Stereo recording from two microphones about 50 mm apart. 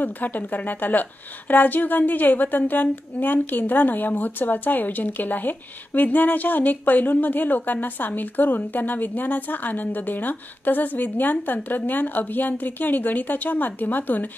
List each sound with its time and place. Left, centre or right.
0.0 s a woman's voice: left